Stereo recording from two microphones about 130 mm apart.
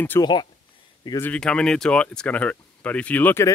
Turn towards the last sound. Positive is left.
turn(degrees=15)  # may be behind; listen again after turning